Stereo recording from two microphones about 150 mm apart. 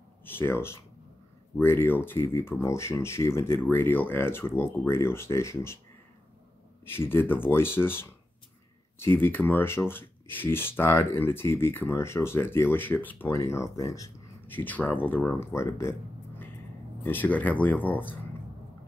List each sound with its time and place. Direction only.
0.2 s speech: 15° left (ahead or behind)
6.9 s speech: 15° left (ahead or behind)